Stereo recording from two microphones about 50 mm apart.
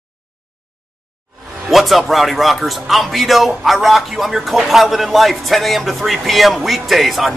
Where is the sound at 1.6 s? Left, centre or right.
Centre.